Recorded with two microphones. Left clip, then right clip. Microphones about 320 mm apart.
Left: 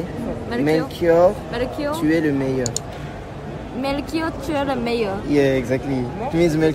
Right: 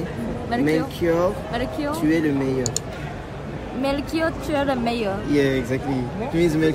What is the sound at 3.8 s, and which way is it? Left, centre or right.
A woman's voice, centre.